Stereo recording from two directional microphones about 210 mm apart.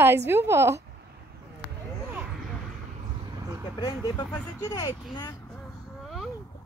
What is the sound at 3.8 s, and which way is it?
Speech, 20° left (ahead or behind).